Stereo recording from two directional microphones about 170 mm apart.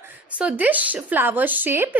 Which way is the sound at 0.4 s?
10° right (ahead or behind).